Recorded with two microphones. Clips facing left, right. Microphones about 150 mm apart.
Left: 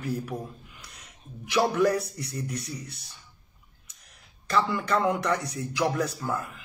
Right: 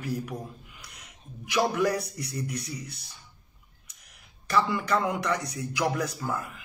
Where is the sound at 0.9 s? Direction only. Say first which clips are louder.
Left 2 dB; 10° right (ahead or behind).